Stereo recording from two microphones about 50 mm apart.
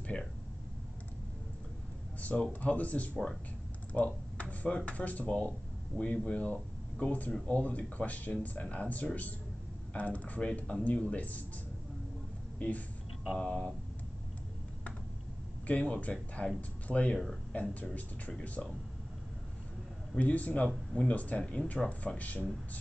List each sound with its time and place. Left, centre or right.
0.1 s a sound: centre
2.1 s a sound: left
2.6 s speech: left
3.9 s a sound: left
4.7 s speech: left
12.5 s speech: left
13.4 s speech: centre
15.6 s speech: left
20.2 s speech: left
21.4 s speech: centre
21.8 s speech: left